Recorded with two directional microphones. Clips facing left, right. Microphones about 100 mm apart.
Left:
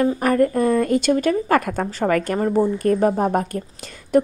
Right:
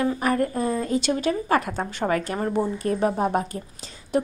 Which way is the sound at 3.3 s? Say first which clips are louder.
Left 4 dB; 55° left (ahead or behind).